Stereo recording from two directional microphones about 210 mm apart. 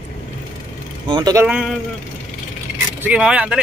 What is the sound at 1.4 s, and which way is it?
Speech, 5° right (ahead or behind).